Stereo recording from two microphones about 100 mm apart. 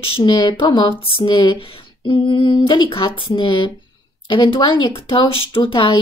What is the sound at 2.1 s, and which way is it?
A woman's voice, 50° left (ahead or behind).